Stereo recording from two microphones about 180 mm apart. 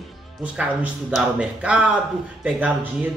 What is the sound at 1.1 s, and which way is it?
Speech, 5° right (ahead or behind).